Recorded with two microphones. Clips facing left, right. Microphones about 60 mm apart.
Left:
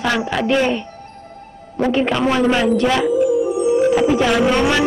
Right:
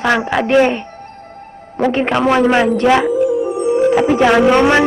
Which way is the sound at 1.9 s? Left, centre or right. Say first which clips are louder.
Right 3 dB; right.